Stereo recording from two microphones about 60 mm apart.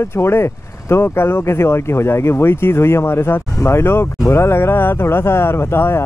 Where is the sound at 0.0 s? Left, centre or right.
Left.